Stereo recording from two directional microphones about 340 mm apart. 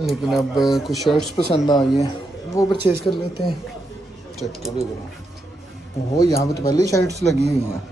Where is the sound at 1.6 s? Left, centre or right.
Centre.